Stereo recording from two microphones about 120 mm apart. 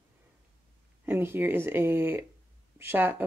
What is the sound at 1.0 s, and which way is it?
Speech, 20° right (ahead or behind).